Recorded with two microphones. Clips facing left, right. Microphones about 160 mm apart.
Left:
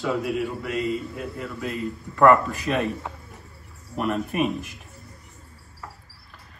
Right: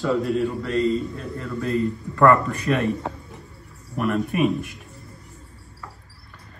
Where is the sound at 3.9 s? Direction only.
30° left (ahead or behind).